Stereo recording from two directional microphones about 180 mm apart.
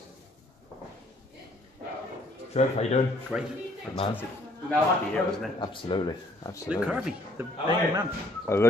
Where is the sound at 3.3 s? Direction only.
5° right (ahead or behind).